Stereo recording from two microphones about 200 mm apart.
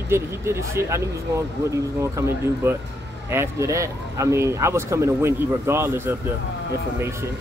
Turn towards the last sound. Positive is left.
turn(degrees=-10)  # may be behind; listen again after turning